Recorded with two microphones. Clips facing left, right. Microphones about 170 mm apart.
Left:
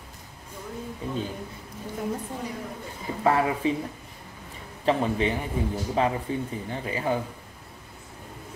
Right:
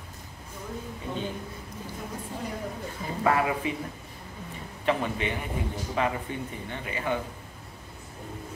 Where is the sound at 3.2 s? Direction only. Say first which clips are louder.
Left 2 dB; 30° left (ahead or behind).